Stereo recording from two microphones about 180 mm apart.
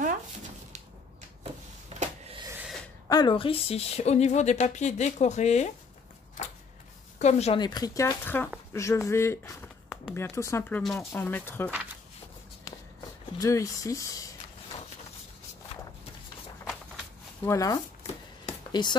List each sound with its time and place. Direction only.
2.0 s a sound: 35° right (ahead or behind)
2.4 s snort: 10° right (ahead or behind)
3.1 s a woman's voice: 25° left (ahead or behind)
7.2 s a woman's voice: 40° left (ahead or behind)
7.6 s speech: 20° left (ahead or behind)
13.4 s speech: 15° left (ahead or behind)
17.5 s speech: 20° left (ahead or behind)